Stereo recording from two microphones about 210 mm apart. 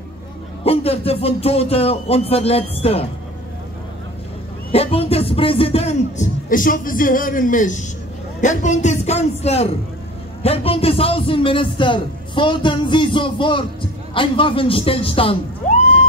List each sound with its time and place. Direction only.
0.7 s a man's voice: 30° left (ahead or behind)
4.7 s a man's voice: 30° left (ahead or behind)